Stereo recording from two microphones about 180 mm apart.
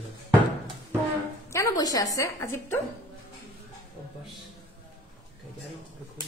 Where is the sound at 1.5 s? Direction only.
20° left (ahead or behind).